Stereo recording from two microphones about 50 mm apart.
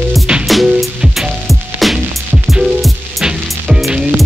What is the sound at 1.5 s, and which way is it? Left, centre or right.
Music, centre.